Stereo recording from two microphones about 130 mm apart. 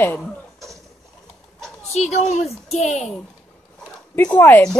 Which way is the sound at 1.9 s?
60° left (ahead or behind).